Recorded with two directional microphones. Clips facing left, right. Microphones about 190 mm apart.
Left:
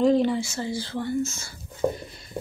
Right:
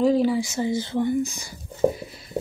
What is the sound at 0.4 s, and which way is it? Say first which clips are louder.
Speech: right 5 dB; 15° right (ahead or behind).